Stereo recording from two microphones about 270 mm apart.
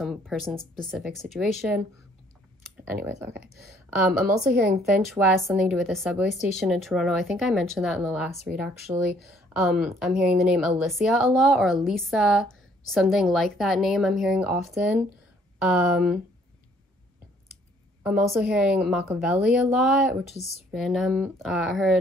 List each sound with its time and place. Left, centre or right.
0.0 s speech: centre
2.9 s speech: centre
8.9 s speech: centre
9.5 s speech: centre
18.0 s speech: centre
20.3 s speech: left
20.7 s speech: centre